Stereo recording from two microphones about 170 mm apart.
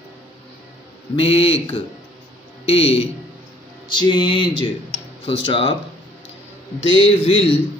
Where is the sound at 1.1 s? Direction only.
35° left (ahead or behind).